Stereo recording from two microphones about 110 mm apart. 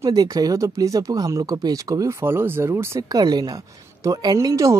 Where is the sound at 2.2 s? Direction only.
20° right (ahead or behind).